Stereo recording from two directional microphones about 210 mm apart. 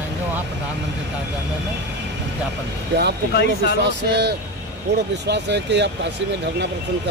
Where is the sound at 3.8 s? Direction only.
55° right (ahead or behind).